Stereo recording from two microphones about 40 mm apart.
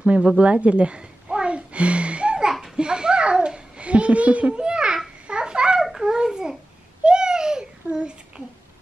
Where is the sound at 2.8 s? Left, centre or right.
Right.